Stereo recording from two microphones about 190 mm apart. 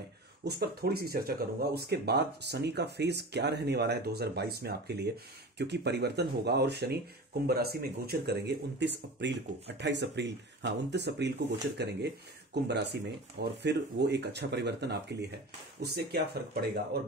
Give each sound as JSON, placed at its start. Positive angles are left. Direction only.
{"t": 0.5, "sound": "speech", "side_deg": -55}